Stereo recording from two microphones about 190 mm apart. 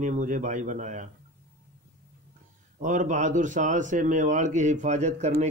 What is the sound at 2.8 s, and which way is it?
Speech, 40° right (ahead or behind).